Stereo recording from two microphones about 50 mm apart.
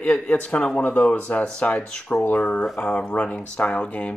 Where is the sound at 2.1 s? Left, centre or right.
Left.